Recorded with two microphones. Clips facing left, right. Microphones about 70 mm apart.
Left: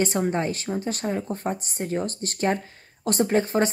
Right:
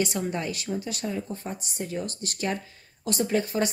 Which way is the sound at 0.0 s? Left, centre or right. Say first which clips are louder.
Left 4 dB; left.